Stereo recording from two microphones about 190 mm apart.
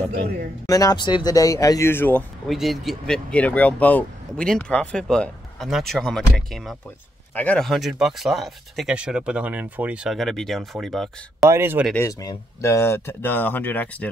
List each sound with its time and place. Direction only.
0.1 s speech: 55° right (ahead or behind)
0.7 s speech: 20° left (ahead or behind); by 11.4 s centre (ahead or behind)
11.5 s speech: 10° right (ahead or behind)
11.9 s speech: 15° left (ahead or behind)